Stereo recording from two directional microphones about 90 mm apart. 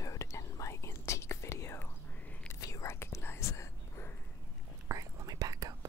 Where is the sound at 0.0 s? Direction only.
35° left (ahead or behind).